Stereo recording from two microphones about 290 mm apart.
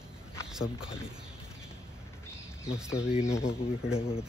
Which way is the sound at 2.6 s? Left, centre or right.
Centre.